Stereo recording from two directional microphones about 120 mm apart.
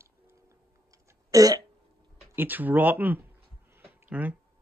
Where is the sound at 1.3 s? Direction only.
30° right (ahead or behind).